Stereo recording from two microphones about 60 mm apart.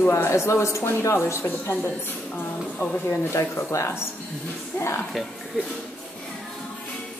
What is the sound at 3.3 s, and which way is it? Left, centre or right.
Speech, left.